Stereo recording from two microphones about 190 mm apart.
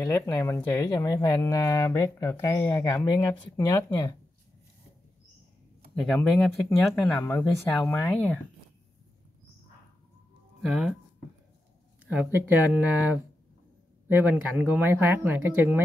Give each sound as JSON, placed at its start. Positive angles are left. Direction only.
{"t": 0.0, "sound": "speech", "side_deg": 15}
{"t": 5.9, "sound": "speech", "side_deg": 0}
{"t": 10.6, "sound": "speech", "side_deg": -5}
{"t": 12.1, "sound": "speech", "side_deg": -10}